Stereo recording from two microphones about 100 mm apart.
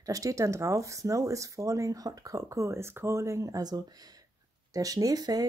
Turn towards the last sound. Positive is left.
turn(degrees=-40)  # may be behind; listen again after turning